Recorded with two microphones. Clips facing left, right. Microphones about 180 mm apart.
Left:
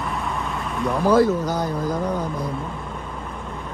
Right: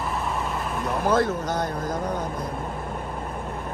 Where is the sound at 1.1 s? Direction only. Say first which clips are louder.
Left 6 dB; 5° left (ahead or behind).